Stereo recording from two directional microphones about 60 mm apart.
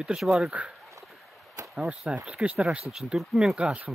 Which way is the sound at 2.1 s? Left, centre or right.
Right.